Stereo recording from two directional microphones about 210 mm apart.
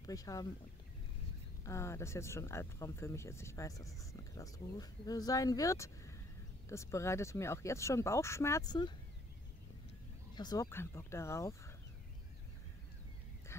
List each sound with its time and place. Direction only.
0.0 s speech: 15° left (ahead or behind)
1.6 s speech: 15° left (ahead or behind)
10.3 s speech: 20° left (ahead or behind)
13.5 s a sound: 10° left (ahead or behind)